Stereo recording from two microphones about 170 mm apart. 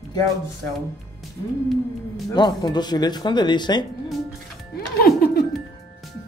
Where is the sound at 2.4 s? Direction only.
25° left (ahead or behind).